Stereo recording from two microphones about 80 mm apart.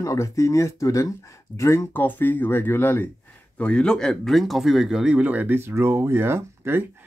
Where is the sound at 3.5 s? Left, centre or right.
Centre; by 6.9 s right.